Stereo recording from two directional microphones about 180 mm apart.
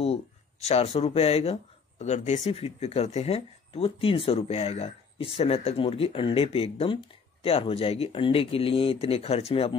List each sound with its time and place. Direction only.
0.0 s speech: 35° left (ahead or behind)